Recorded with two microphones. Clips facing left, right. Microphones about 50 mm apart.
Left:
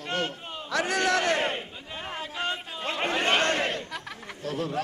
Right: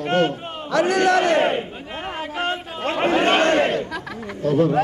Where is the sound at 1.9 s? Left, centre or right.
Right.